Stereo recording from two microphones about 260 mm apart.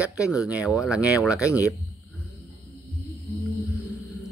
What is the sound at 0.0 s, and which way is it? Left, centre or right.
Speech, centre.